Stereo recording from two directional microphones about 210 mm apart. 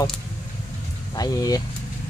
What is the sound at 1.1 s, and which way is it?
Speech, 20° left (ahead or behind).